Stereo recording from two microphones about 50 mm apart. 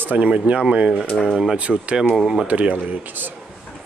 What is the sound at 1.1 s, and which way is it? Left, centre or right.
Speech, centre.